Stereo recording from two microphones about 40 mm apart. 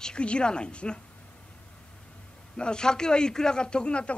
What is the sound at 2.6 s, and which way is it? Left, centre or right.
A man's voice, left.